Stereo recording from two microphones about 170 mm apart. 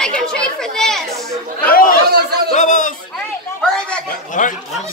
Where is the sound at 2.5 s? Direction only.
50° left (ahead or behind).